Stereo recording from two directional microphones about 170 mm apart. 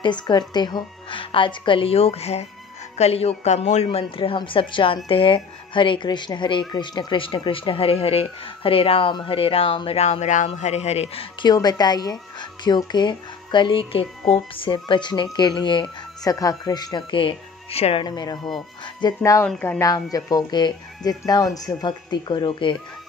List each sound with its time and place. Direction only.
0.0 s speech: 25° left (ahead or behind)
11.4 s speech: 25° left (ahead or behind)
19.4 s speech: 5° left (ahead or behind)
19.8 s speech: 20° left (ahead or behind)